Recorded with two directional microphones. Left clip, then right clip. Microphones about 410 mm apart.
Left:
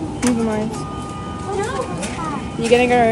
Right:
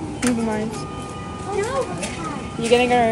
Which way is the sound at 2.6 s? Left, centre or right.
Centre.